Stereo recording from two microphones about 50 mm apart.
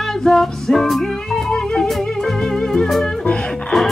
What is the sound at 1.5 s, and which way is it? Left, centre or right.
Music, centre.